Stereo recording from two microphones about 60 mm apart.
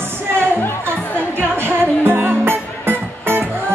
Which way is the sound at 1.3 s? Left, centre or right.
Right.